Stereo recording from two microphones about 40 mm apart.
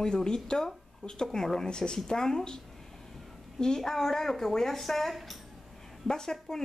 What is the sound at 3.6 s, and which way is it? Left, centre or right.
Speech, centre.